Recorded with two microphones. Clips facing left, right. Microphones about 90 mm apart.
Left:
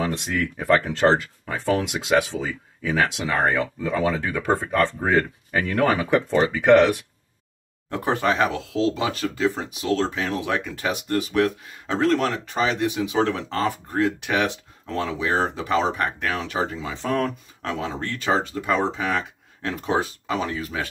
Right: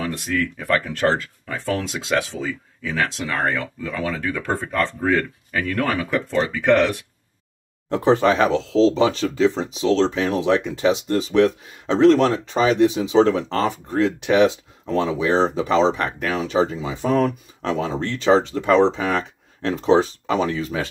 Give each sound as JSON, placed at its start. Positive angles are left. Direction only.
{"t": 0.0, "sound": "speech", "side_deg": 20}
{"t": 7.9, "sound": "speech", "side_deg": -25}
{"t": 17.6, "sound": "speech", "side_deg": -30}